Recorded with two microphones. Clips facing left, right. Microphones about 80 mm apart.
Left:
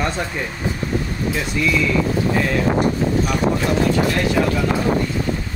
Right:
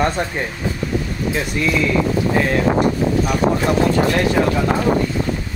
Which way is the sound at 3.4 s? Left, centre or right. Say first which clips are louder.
Right 4 dB; right.